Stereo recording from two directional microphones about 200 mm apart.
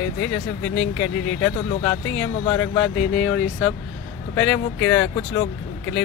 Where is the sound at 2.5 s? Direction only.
10° left (ahead or behind).